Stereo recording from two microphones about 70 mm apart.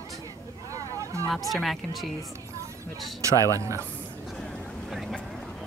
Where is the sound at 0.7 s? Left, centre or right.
Right.